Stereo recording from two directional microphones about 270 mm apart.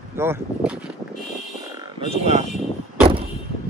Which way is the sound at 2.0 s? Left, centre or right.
Right.